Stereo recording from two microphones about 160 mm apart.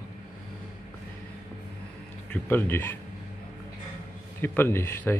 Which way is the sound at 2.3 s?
10° left (ahead or behind).